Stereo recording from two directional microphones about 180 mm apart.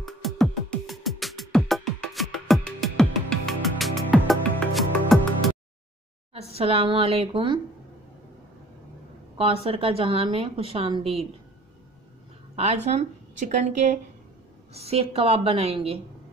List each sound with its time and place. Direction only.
0.0 s music: centre (ahead or behind)
6.5 s a woman's voice: 35° right (ahead or behind)
9.4 s a woman's voice: 30° right (ahead or behind)
12.5 s a woman's voice: 35° right (ahead or behind)